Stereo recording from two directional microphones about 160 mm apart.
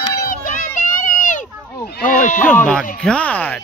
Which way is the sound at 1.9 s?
55° left (ahead or behind).